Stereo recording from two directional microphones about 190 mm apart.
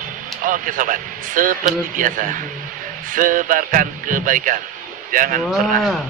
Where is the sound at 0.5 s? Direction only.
45° right (ahead or behind).